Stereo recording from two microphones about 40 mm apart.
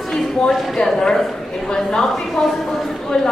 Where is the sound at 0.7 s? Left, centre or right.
Centre.